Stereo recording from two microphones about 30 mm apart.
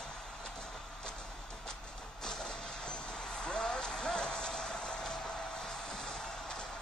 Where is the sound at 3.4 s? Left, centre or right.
Left.